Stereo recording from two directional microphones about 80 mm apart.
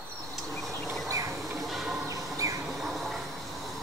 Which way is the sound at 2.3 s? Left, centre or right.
Right.